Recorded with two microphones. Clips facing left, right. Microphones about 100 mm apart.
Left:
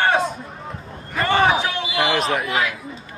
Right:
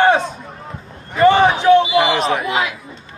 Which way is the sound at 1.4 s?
Centre (ahead or behind).